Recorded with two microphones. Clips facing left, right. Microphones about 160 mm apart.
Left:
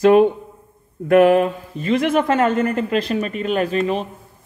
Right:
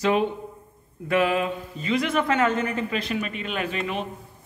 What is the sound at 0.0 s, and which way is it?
Speech, 50° left (ahead or behind).